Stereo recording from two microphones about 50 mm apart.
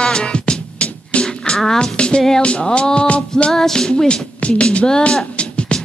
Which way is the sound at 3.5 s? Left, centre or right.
Centre.